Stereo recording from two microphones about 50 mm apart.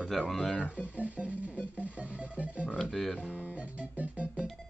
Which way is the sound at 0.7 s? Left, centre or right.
Right.